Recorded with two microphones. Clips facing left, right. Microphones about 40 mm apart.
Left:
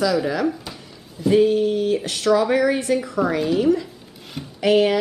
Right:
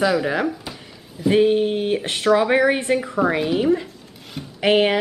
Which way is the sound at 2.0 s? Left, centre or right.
Right.